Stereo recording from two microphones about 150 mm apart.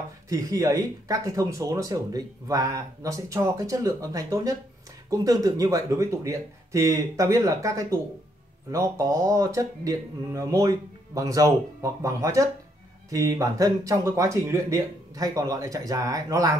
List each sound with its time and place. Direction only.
0.3 s speech: 20° right (ahead or behind)